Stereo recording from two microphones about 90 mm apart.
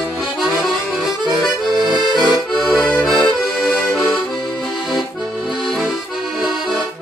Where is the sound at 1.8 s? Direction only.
55° right (ahead or behind).